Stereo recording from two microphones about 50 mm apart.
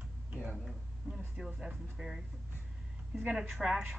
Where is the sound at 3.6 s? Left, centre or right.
Centre.